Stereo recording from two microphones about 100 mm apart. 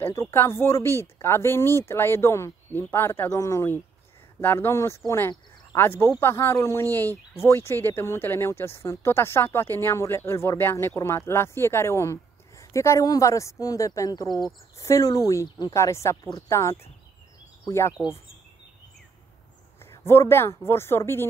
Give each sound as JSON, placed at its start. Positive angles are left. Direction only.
{"t": 0.0, "sound": "speech", "side_deg": 25}
{"t": 20.1, "sound": "speech", "side_deg": 25}